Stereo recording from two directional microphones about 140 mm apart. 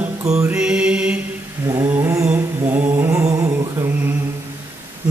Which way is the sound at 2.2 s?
15° right (ahead or behind).